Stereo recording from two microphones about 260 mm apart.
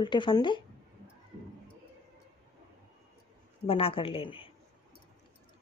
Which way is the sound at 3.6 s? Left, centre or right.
Left.